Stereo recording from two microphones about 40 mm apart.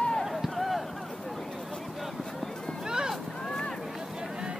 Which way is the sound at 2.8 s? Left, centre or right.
Centre.